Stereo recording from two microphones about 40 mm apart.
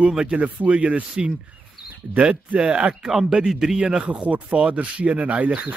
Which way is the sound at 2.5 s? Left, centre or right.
Right.